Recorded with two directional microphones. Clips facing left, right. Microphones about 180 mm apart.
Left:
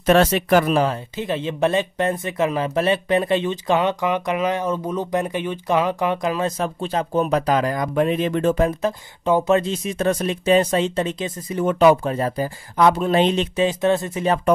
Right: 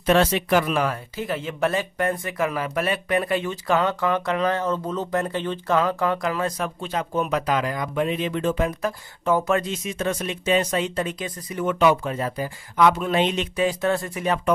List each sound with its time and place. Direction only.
0.0 s speech: 45° left (ahead or behind)
8.8 s speech: 20° left (ahead or behind)